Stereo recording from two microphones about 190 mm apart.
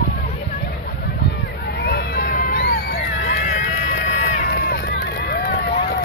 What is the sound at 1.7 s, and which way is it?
Crowd, 60° left (ahead or behind).